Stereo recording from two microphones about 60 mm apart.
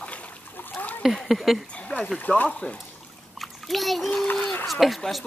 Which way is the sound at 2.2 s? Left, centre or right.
Left.